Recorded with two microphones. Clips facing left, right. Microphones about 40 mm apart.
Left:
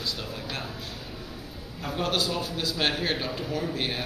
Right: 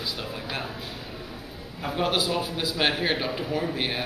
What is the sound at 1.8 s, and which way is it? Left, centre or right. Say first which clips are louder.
A man's voice: right 2 dB; centre.